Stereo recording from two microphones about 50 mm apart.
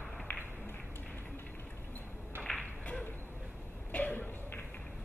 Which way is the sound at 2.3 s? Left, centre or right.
Right.